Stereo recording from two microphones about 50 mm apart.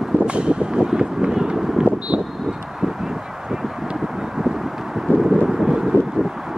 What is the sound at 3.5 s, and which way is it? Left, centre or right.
Vehicle, centre.